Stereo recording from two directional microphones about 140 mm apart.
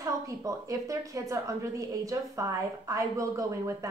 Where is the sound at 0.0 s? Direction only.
25° right (ahead or behind).